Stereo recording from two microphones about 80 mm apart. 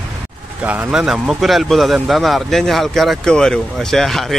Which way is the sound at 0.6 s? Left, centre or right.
Right.